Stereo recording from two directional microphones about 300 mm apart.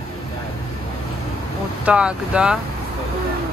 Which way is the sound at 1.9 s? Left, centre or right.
Centre.